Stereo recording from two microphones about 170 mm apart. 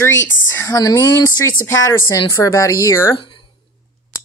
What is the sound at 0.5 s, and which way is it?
Speech, 20° left (ahead or behind).